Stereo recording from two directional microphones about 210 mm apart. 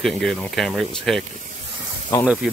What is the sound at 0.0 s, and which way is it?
Speech, centre (ahead or behind).